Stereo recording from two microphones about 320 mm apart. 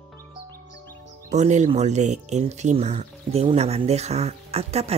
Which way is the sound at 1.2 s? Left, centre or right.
Right.